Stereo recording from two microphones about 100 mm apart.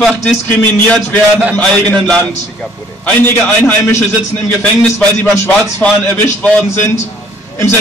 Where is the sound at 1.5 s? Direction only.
5° left (ahead or behind).